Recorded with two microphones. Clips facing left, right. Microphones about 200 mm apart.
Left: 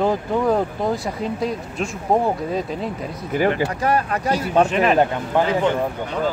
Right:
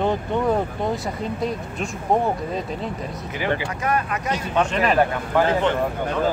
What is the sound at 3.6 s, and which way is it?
Speech, 35° left (ahead or behind).